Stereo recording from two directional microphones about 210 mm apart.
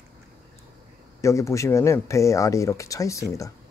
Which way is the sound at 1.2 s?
15° left (ahead or behind).